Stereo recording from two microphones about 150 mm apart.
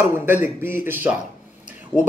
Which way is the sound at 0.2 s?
15° right (ahead or behind).